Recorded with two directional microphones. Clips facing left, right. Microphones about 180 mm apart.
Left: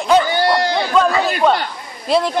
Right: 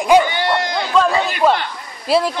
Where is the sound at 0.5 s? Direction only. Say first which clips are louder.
Left 3 dB; 35° left (ahead or behind).